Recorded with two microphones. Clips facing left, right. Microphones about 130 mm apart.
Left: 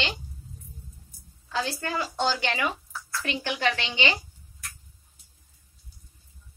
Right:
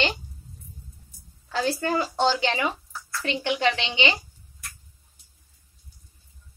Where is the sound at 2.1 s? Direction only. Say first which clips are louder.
Right 1 dB; 25° right (ahead or behind).